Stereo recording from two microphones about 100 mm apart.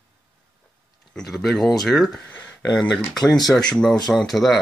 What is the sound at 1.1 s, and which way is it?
Speech, 5° left (ahead or behind).